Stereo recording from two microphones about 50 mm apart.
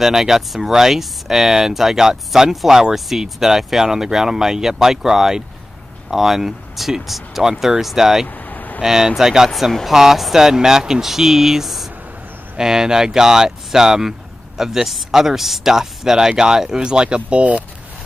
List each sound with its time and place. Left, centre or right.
0.0 s speech: centre
8.5 s vehicle: left
8.8 s speech: centre
9.5 s speech: centre
9.8 s speech: centre; by 17.6 s right